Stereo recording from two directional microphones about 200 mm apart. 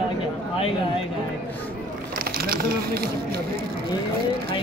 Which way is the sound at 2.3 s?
50° right (ahead or behind).